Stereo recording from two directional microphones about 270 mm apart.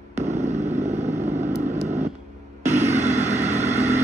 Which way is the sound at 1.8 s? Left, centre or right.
Right.